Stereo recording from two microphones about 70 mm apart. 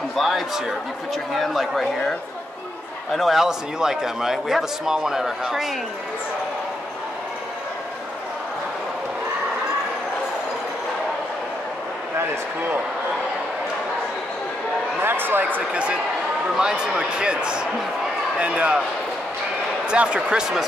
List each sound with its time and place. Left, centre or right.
0.1 s a man's voice: centre
15.0 s a sound: right
15.7 s speech: centre
19.9 s speech: centre